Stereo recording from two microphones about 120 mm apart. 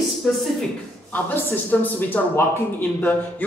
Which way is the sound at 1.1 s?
15° left (ahead or behind).